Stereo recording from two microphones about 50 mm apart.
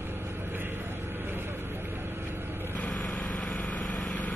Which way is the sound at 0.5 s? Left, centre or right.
Right.